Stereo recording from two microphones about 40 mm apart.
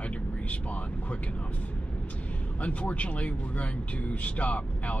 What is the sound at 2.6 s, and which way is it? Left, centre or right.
Speech, left.